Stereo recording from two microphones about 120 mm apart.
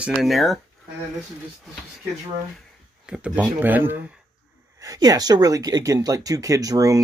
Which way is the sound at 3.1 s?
10° right (ahead or behind).